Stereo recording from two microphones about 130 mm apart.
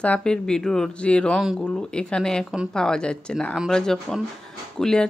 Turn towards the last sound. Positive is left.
turn(degrees=5)  # may be behind; listen again after turning